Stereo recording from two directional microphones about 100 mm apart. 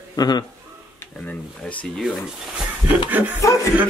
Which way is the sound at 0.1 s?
40° left (ahead or behind).